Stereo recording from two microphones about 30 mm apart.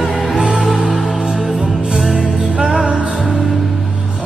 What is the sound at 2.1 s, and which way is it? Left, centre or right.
Music, right.